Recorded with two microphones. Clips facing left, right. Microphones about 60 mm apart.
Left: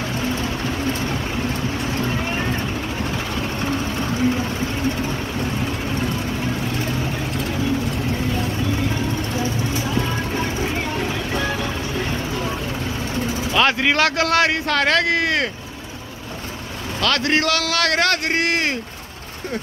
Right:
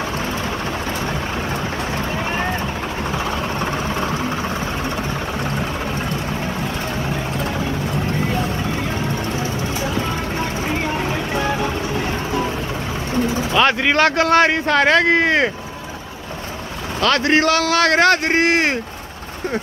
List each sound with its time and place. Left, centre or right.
11.1 s vehicle: centre
13.5 s a man's voice: centre
17.0 s a man's voice: centre